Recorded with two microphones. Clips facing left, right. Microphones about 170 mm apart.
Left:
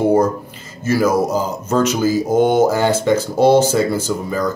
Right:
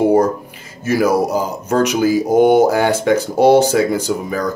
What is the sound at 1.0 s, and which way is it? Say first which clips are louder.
Speech: right 1 dB; 15° right (ahead or behind).